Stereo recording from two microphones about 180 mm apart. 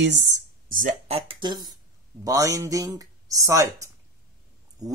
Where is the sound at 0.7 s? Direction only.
50° right (ahead or behind).